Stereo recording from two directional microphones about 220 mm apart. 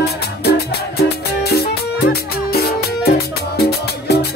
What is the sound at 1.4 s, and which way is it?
Music, 45° left (ahead or behind).